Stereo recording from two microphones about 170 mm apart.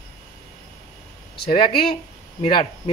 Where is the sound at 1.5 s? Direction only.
30° left (ahead or behind).